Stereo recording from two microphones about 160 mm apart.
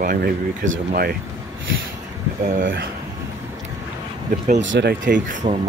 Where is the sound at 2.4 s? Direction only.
60° right (ahead or behind).